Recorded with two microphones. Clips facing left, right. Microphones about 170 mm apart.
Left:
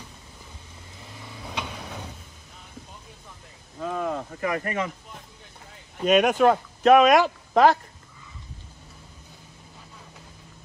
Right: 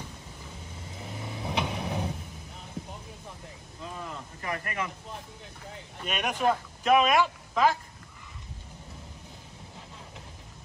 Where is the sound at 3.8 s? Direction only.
70° left (ahead or behind).